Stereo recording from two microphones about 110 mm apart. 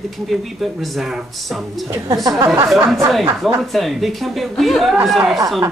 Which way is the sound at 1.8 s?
35° right (ahead or behind).